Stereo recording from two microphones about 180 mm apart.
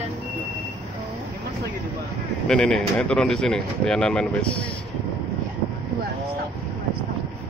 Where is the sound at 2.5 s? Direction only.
5° left (ahead or behind).